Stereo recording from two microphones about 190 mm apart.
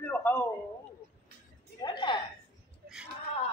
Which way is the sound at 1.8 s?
25° left (ahead or behind).